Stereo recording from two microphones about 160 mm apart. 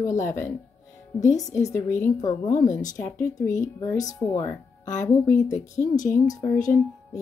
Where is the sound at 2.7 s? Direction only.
50° left (ahead or behind).